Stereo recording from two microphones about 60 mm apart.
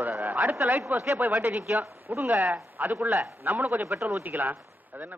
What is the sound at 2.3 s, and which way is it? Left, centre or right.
Speech, right.